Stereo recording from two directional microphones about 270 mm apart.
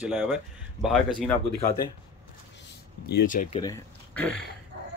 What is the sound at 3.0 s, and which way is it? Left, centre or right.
Speech, left.